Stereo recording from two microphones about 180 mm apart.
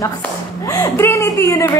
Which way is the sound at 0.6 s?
20° left (ahead or behind).